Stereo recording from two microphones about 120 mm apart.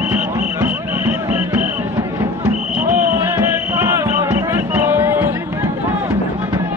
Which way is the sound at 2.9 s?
15° right (ahead or behind).